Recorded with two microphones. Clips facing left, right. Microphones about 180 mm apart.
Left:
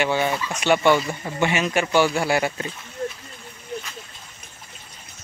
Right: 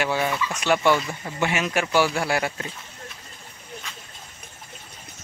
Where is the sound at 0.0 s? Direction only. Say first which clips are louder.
Left 2 dB; centre (ahead or behind).